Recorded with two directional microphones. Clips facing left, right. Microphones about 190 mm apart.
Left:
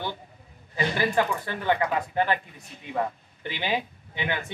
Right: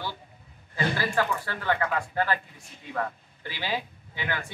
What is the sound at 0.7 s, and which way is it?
Speech, 20° left (ahead or behind).